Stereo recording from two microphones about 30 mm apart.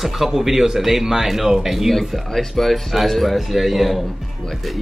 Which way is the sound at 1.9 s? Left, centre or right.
Centre.